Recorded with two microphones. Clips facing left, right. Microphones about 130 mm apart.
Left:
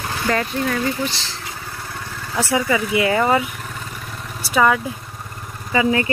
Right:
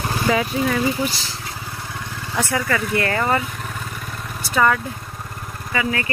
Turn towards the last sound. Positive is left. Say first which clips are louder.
# left 5 dB
turn(degrees=25)  # may be behind; listen again after turning